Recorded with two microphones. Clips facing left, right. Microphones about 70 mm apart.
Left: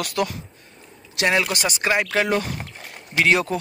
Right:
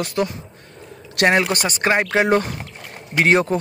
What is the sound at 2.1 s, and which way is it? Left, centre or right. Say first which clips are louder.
Speech: right 4 dB; right.